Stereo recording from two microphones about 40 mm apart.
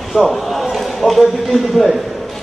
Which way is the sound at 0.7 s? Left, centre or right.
Centre.